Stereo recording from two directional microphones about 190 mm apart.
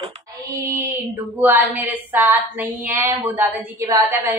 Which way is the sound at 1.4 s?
10° right (ahead or behind).